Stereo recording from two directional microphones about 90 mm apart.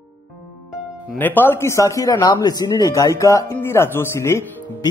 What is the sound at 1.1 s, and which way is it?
A man's voice, 20° left (ahead or behind).